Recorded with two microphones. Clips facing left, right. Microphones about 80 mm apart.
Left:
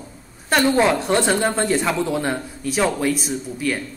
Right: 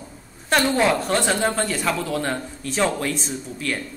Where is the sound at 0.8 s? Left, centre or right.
Centre.